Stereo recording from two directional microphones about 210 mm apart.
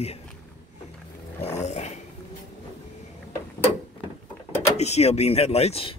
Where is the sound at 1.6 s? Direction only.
35° left (ahead or behind).